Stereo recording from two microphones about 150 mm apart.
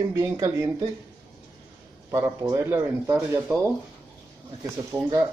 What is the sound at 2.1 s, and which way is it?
Speech, 20° right (ahead or behind).